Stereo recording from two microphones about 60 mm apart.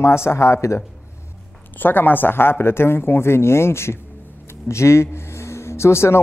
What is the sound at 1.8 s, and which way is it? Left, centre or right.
Speech, left.